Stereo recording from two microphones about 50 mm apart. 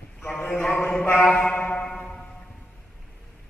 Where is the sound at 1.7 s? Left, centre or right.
Left.